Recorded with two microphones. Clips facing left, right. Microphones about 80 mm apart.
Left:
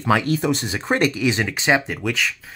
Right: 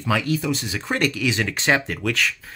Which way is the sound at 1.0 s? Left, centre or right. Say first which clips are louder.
Left 2 dB; left.